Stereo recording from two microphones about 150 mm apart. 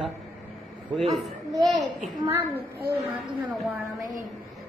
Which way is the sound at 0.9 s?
Centre (ahead or behind).